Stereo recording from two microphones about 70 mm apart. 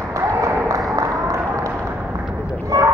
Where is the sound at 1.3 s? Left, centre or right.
Right.